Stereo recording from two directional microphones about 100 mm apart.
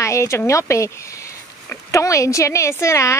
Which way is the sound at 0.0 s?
30° left (ahead or behind).